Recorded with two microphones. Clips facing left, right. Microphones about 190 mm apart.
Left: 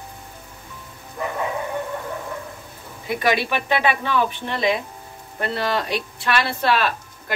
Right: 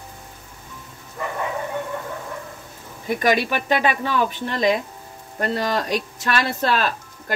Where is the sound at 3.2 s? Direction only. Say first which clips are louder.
Right 1 dB; 40° right (ahead or behind).